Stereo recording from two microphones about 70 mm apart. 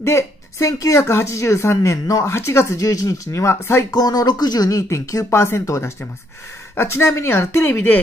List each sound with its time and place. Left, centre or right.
0.0 s speech: left
3.9 s speech: left